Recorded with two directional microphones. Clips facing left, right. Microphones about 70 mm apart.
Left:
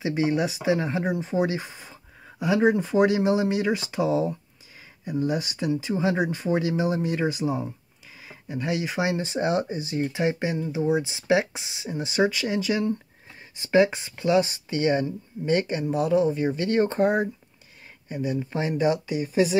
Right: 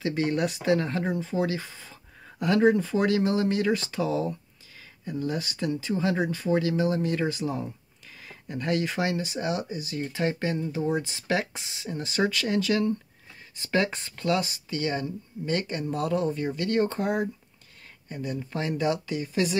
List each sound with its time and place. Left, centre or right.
0.0 s speech: centre
2.2 s speech: centre
9.1 s speech: left; by 14.5 s centre
14.5 s speech: left
18.0 s speech: centre